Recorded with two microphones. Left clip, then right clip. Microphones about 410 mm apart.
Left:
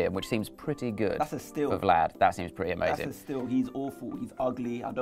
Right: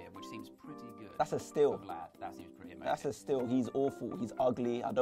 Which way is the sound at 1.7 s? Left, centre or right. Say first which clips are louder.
Left 16 dB; left.